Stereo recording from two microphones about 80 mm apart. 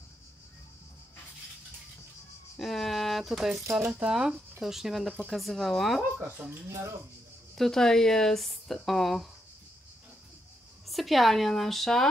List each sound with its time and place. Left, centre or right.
2.6 s speech: centre
6.1 s speech: right
6.7 s speech: right
7.5 s speech: centre
10.9 s a woman's voice: centre